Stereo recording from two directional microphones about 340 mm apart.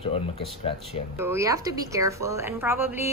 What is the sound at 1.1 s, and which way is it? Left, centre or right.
Speech, centre.